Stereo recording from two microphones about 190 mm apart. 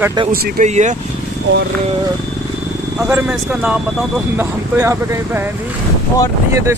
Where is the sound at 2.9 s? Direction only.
10° right (ahead or behind).